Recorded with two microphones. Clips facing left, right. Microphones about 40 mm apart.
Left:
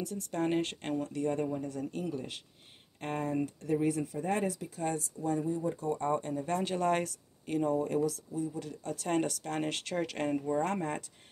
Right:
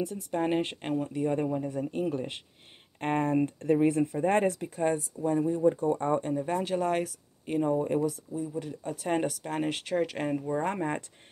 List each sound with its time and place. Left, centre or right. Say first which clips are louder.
0.0 s speech: right 4 dB; centre; by 4.8 s right
4.8 s speech: right 5 dB; right; by 7.1 s centre
7.4 s speech: right 3 dB; centre
10.5 s speech: right 2 dB; centre